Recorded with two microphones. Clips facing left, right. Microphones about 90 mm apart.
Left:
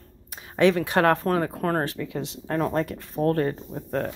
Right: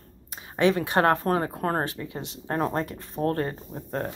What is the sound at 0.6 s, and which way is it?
Speech, 30° right (ahead or behind).